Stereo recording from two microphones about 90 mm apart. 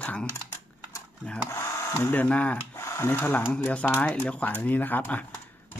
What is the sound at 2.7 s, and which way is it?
Speech, 30° left (ahead or behind).